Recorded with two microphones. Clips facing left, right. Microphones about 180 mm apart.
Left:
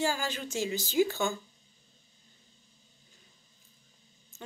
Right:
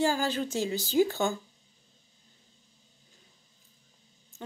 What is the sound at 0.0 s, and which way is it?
Speech, 40° right (ahead or behind).